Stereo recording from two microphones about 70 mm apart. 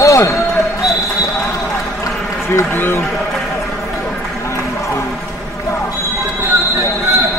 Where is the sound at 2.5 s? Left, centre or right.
Left.